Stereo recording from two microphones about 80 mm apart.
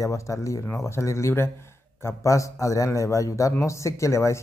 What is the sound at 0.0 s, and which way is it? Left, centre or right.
A man's voice, left.